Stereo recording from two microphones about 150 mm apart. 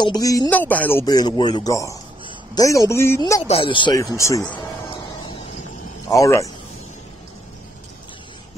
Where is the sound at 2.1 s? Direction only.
35° right (ahead or behind).